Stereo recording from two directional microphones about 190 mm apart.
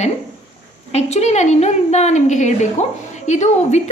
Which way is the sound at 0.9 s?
35° left (ahead or behind).